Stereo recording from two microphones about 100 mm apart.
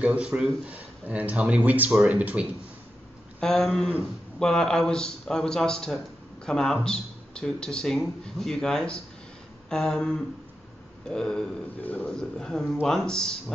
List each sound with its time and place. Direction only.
0.0 s speech: 10° right (ahead or behind)
3.3 s speech: 5° left (ahead or behind)
11.8 s speech: 15° left (ahead or behind)
12.1 s speech: 5° left (ahead or behind)